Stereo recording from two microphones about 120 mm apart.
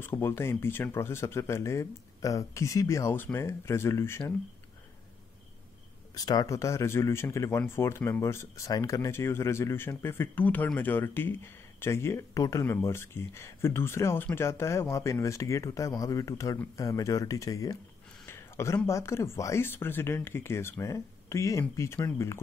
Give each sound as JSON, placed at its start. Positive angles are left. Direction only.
{"t": 0.0, "sound": "speech", "side_deg": 20}
{"t": 6.1, "sound": "speech", "side_deg": 30}
{"t": 18.2, "sound": "a sound", "side_deg": 20}
{"t": 18.9, "sound": "speech", "side_deg": 25}